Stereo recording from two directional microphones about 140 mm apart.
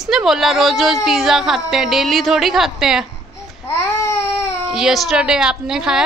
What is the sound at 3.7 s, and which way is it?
Babbling, 15° left (ahead or behind).